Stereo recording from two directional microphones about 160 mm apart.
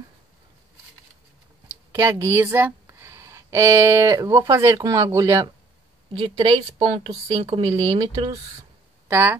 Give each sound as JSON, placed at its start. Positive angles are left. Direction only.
{"t": 1.9, "sound": "speech", "side_deg": -15}
{"t": 6.2, "sound": "speech", "side_deg": -30}
{"t": 9.0, "sound": "speech", "side_deg": -15}